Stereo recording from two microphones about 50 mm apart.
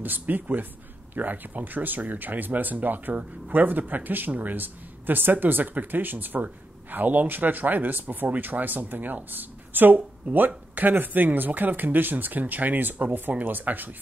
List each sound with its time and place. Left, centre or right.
0.0 s speech: right